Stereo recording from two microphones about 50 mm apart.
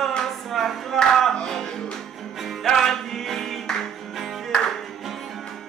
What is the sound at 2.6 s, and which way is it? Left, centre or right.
Music, centre.